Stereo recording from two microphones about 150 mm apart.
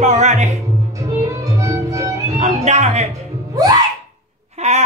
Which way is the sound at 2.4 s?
50° right (ahead or behind).